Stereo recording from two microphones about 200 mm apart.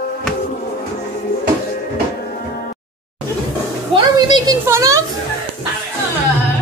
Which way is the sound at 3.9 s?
20° right (ahead or behind).